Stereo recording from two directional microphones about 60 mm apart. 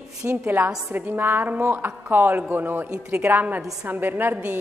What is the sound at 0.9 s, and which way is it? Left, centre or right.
A man's voice, right.